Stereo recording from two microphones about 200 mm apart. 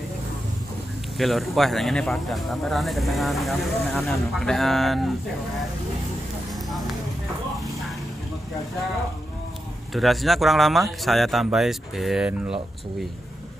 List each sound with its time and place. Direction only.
1.1 s speech: centre (ahead or behind)
9.9 s speech: centre (ahead or behind)